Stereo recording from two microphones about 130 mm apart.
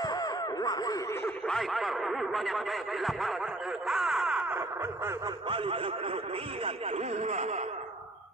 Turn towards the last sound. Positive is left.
turn(degrees=-60)  # may be behind; listen again after turning